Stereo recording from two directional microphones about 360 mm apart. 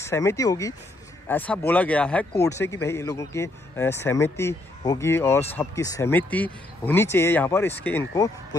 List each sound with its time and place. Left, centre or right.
0.0 s speech: centre